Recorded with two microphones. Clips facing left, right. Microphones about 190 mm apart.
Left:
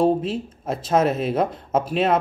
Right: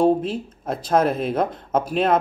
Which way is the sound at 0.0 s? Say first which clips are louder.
Right 1 dB; 5° left (ahead or behind).